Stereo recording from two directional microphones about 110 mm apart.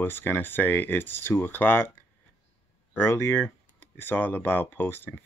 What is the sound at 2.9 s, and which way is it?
Speech, 20° left (ahead or behind).